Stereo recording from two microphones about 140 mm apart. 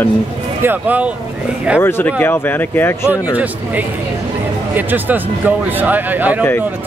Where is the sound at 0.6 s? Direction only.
10° right (ahead or behind).